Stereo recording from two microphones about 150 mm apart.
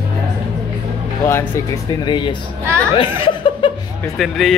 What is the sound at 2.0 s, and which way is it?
Speech, 30° left (ahead or behind).